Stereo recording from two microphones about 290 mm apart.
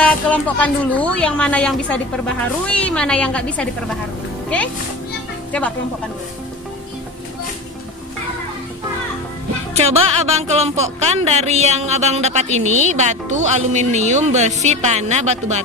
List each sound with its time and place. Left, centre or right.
0.0 s a woman's voice: centre
9.8 s a woman's voice: right